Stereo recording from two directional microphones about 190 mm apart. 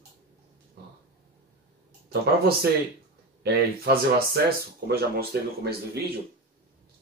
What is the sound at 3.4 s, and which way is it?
Speech, 55° right (ahead or behind).